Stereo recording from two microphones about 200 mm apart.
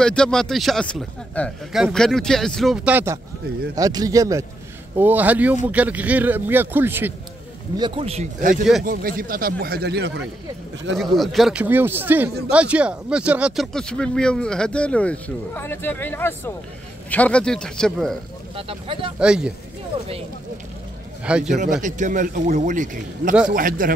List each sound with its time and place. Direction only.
0.0 s a man's voice: 5° left (ahead or behind)
7.8 s speech: 25° right (ahead or behind); by 10.2 s 55° right (ahead or behind)
11.1 s a man's voice: centre (ahead or behind)
18.6 s speech: 25° right (ahead or behind)
19.1 s speech: 5° right (ahead or behind)
21.2 s speech: 5° right (ahead or behind)
21.8 s speech: 40° right (ahead or behind)